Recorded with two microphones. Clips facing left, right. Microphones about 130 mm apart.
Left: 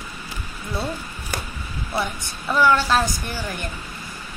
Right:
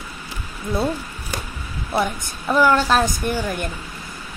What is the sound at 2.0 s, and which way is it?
Speech, 20° right (ahead or behind).